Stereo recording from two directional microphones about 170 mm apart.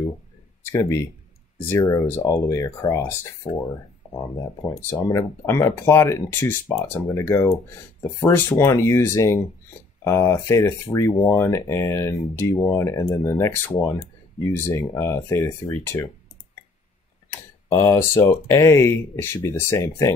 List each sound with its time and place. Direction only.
0.7 s speech: 15° left (ahead or behind)
4.6 s speech: 15° left (ahead or behind)
17.3 s speech: 15° left (ahead or behind)